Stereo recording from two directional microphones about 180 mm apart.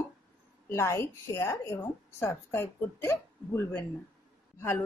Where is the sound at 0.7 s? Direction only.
15° left (ahead or behind).